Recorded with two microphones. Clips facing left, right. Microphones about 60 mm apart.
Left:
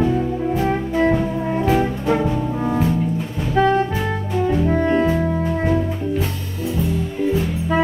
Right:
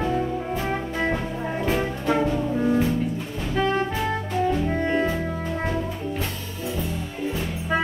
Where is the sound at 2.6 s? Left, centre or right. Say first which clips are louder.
Right 1 dB; centre.